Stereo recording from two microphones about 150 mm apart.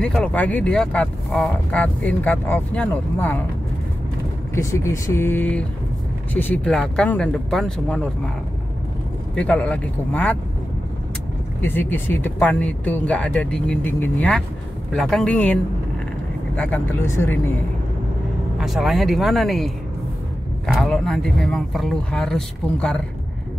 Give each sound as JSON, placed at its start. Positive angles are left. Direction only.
{"t": 0.0, "sound": "speech", "side_deg": 5}
{"t": 4.6, "sound": "speech", "side_deg": 20}
{"t": 9.3, "sound": "speech", "side_deg": 10}
{"t": 11.6, "sound": "speech", "side_deg": 15}
{"t": 18.6, "sound": "speech", "side_deg": 0}